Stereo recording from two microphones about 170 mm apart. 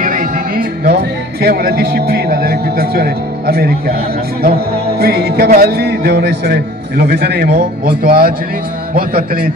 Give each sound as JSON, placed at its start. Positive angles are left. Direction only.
{"t": 0.0, "sound": "music", "side_deg": -55}
{"t": 1.4, "sound": "a man's voice", "side_deg": -65}
{"t": 4.9, "sound": "a man's voice", "side_deg": -65}